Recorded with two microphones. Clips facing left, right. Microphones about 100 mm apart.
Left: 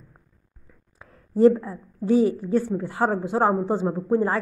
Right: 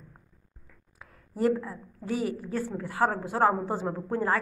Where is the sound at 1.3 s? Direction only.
25° left (ahead or behind).